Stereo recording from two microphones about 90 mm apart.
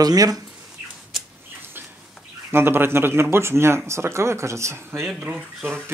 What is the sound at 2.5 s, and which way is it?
Speech, 25° right (ahead or behind).